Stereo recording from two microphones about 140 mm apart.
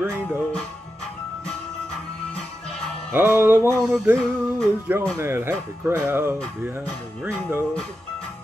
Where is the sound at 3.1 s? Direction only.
15° right (ahead or behind).